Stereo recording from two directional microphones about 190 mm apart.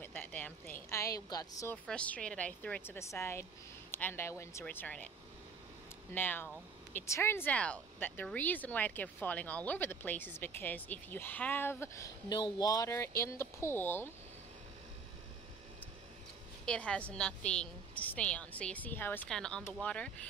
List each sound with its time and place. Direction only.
0.0 s a sound: 10° left (ahead or behind)
0.8 s a woman's voice: 15° left (ahead or behind)
1.9 s speech: 5° left (ahead or behind)
6.1 s speech: 10° left (ahead or behind)
16.6 s a woman's voice: 5° left (ahead or behind)